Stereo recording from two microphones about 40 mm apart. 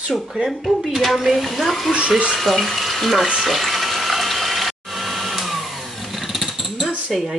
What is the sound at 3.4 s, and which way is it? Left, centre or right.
Water, centre.